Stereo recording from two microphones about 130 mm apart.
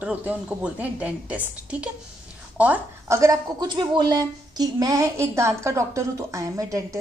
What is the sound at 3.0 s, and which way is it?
A woman's voice, 25° right (ahead or behind).